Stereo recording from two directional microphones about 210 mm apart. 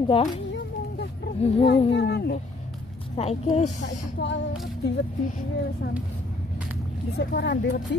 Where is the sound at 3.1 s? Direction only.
30° left (ahead or behind).